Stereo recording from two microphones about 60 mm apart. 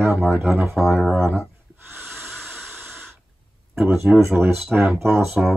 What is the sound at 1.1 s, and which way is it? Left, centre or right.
Speech, right.